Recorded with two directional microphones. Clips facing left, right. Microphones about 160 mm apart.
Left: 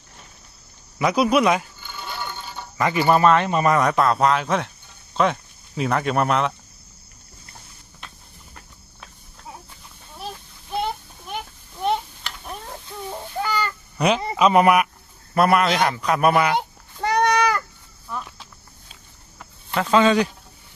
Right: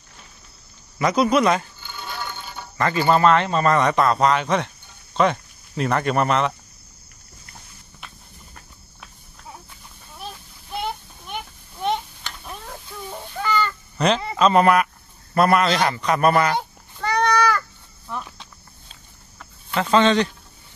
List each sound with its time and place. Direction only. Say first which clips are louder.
0.9 s speech: even; 5° left (ahead or behind)
2.8 s speech: even; 15° left (ahead or behind)
12.4 s a sound: left 2 dB; 15° left (ahead or behind)
14.2 s speech: left 1 dB; 10° left (ahead or behind)
17.0 s babbling: left 1 dB; 20° left (ahead or behind)
18.2 s cricket: even; 5° left (ahead or behind)